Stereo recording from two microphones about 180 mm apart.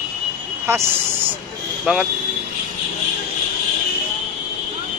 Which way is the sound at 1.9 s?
5° right (ahead or behind).